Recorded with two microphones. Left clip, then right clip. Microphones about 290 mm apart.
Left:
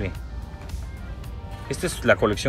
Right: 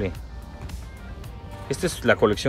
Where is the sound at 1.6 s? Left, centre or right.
Centre.